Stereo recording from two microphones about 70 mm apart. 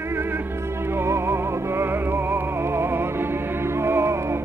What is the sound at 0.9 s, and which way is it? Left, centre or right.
Music, right.